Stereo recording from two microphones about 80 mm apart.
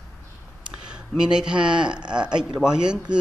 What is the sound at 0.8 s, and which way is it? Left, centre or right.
Speech, centre.